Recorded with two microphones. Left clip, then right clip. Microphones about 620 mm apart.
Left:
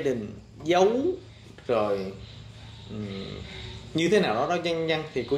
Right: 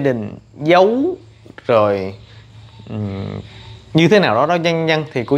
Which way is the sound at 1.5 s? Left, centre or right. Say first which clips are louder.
Right 11 dB; right.